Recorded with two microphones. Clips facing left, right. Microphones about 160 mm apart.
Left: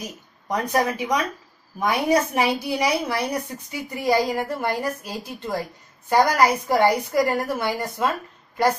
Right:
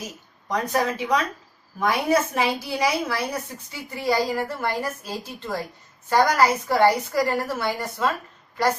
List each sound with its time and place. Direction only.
0.5 s a woman's voice: 15° left (ahead or behind)